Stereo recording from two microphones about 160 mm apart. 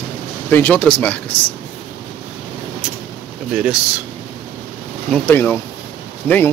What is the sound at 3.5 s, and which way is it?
Speech, 5° right (ahead or behind).